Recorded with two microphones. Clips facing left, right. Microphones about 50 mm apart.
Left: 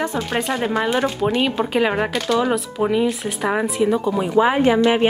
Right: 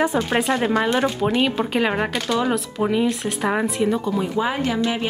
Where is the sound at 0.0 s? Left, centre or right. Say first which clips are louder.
Right 2 dB; centre.